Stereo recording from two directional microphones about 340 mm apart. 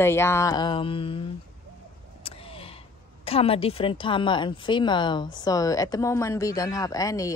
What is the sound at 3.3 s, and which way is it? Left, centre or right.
Speech, centre.